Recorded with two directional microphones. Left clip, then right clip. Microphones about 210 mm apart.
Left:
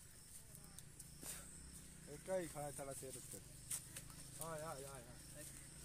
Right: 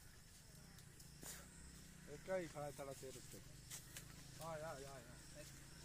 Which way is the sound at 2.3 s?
25° left (ahead or behind).